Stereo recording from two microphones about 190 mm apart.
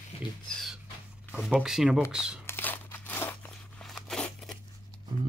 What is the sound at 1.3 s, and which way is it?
Speech, 5° right (ahead or behind).